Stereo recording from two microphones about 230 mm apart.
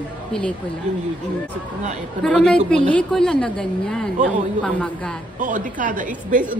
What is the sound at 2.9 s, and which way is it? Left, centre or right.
A woman's voice, centre.